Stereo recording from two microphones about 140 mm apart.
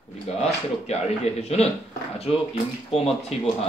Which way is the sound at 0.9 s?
50° left (ahead or behind).